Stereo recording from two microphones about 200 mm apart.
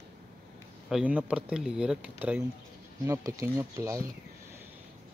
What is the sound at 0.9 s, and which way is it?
Speech, 5° right (ahead or behind).